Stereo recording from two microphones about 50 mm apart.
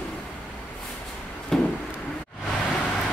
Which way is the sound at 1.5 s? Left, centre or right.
Centre.